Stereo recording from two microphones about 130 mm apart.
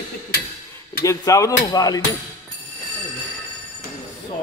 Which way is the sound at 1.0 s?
25° left (ahead or behind).